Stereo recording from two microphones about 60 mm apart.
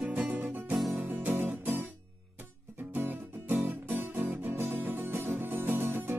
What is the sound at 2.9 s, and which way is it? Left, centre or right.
Music, right.